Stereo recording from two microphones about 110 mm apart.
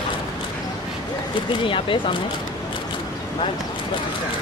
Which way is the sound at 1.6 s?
50° left (ahead or behind).